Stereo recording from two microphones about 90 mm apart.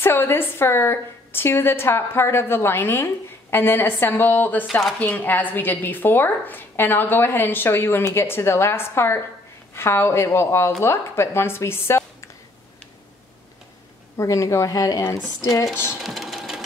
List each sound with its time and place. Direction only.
0.0 s a woman's voice: 25° left (ahead or behind)
14.1 s speech: 35° left (ahead or behind)
16.0 s sewing machine: centre (ahead or behind)